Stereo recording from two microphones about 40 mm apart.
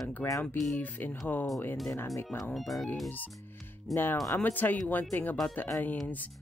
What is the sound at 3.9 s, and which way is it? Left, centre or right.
Speech, left.